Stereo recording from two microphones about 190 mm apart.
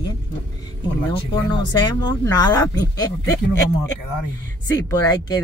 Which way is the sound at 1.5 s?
25° left (ahead or behind).